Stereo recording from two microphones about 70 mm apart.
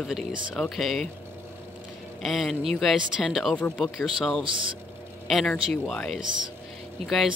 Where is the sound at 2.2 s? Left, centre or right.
Centre.